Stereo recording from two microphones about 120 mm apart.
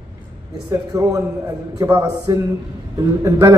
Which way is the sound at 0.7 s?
25° right (ahead or behind).